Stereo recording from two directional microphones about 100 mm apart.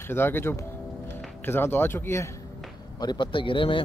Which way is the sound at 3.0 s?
50° left (ahead or behind).